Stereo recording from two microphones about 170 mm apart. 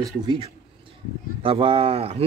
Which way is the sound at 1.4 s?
35° right (ahead or behind).